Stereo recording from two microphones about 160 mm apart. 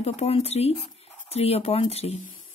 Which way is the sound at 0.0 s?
40° left (ahead or behind).